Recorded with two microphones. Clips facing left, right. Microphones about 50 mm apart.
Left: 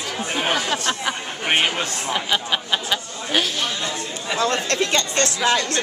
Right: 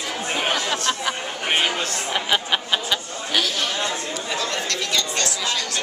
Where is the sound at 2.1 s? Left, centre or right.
Centre.